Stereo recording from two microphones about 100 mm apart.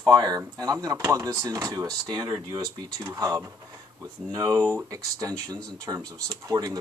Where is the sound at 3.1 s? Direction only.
30° right (ahead or behind).